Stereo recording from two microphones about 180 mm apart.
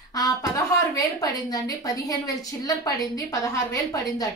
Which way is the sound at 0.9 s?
20° left (ahead or behind).